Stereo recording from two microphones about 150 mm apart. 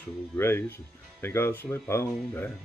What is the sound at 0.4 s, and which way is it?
Speech, 15° left (ahead or behind).